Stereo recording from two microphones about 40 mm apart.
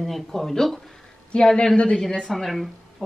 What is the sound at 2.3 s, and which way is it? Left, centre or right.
Speech, centre.